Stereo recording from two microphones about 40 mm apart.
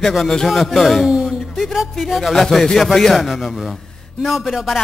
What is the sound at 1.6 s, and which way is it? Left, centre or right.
Speech, centre.